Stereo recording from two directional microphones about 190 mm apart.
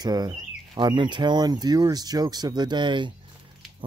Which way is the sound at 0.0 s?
20° right (ahead or behind).